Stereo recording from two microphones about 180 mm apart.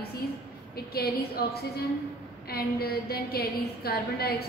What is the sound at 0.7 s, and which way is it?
A woman's voice, 60° left (ahead or behind).